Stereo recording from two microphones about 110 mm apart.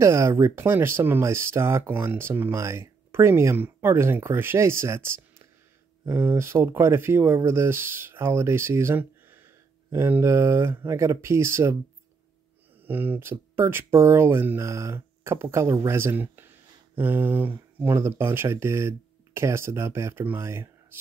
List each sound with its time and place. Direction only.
0.0 s speech: 25° right (ahead or behind)
12.8 s speech: 15° right (ahead or behind)